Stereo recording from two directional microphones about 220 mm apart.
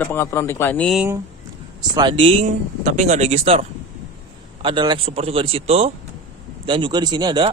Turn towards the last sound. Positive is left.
turn(degrees=-20)  # may be behind; listen again after turning